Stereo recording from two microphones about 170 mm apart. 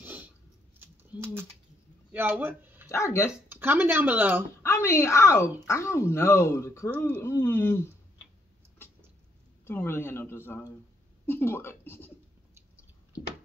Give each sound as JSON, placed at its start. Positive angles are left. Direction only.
{"t": 0.0, "sound": "a sound", "side_deg": -10}
{"t": 1.2, "sound": "speech", "side_deg": -10}
{"t": 2.9, "sound": "speech", "side_deg": 15}
{"t": 3.4, "sound": "speech", "side_deg": -10}
{"t": 4.6, "sound": "speech", "side_deg": 15}
{"t": 9.7, "sound": "speech", "side_deg": 15}